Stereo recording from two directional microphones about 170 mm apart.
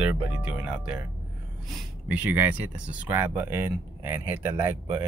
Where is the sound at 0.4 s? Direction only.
5° right (ahead or behind).